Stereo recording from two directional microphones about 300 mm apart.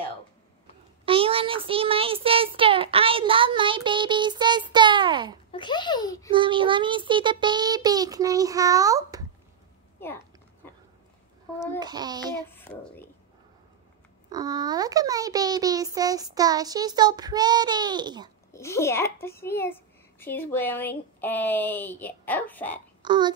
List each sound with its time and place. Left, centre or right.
1.0 s child singing: centre
5.5 s a sound: centre
6.3 s a child's voice: centre
9.9 s a sound: centre
11.8 s a child's voice: centre
12.4 s a child's voice: centre
14.3 s a child's voice: centre
18.5 s a child's voice: centre
23.0 s a child's voice: centre